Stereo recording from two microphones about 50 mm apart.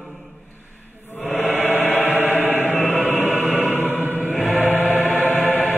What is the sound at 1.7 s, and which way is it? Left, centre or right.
Music, left.